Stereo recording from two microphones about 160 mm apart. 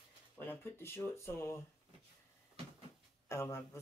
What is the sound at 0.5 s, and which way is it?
A man's voice, 15° left (ahead or behind).